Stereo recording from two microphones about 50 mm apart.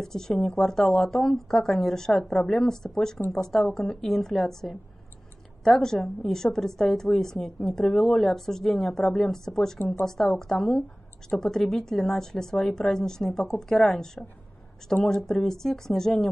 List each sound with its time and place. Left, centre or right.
0.0 s speech: centre
7.8 s a woman's voice: centre
8.1 s speech: centre